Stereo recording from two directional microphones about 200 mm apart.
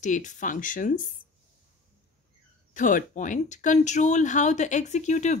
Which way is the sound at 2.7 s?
40° left (ahead or behind).